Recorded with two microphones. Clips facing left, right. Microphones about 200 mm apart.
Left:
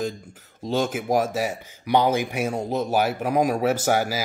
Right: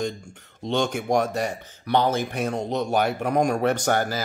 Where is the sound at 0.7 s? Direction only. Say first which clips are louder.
Even; 5° left (ahead or behind).